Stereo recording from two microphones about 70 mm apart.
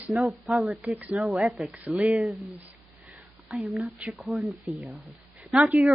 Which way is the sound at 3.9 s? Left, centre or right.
Centre.